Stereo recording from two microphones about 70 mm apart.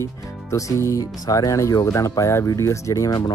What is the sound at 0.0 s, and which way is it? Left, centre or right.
Speech, left.